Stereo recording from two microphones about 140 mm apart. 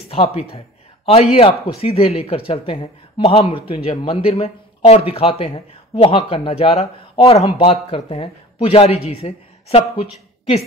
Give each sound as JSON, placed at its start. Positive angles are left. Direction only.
{"t": 0.1, "sound": "speech", "side_deg": 45}